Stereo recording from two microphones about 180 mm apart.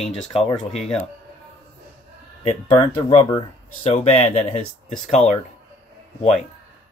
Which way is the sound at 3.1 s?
35° left (ahead or behind).